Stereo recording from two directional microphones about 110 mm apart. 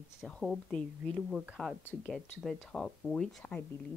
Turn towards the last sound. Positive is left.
turn(degrees=5)  # may be behind; listen again after turning